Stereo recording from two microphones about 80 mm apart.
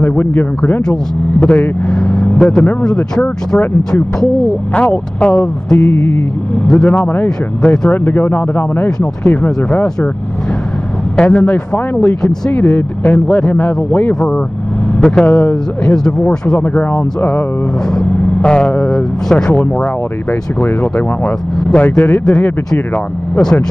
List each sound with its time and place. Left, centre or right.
0.0 s speech: left
1.9 s speech: centre
5.8 s speech: left
6.5 s speech: centre
7.2 s speech: centre
7.9 s speech: left
11.1 s speech: centre
12.2 s speech: centre
19.6 s speech: left
21.5 s speech: centre
21.8 s speech: left